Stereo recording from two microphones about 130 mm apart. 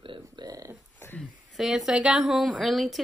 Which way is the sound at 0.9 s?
15° left (ahead or behind).